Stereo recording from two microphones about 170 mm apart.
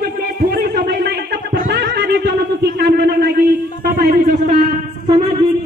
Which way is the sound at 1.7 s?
80° right.